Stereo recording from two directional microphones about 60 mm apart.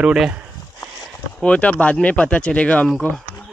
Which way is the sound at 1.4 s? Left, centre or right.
Centre.